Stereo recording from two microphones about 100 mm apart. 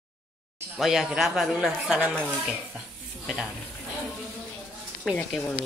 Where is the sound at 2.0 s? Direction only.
15° right (ahead or behind).